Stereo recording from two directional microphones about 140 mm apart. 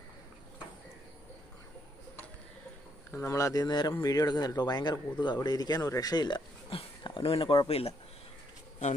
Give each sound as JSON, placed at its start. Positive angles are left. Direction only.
{"t": 3.1, "sound": "speech", "side_deg": 20}